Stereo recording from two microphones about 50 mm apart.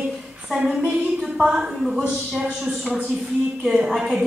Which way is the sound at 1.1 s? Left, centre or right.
Centre.